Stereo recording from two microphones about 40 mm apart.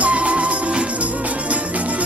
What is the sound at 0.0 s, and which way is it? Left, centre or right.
Music, right.